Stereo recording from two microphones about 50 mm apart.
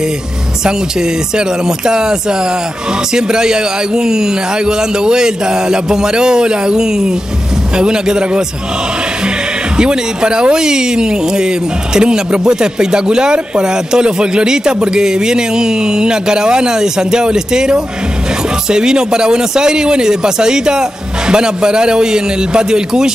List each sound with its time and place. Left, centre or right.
1.9 s speech: centre
3.2 s speech: centre
9.8 s speech: centre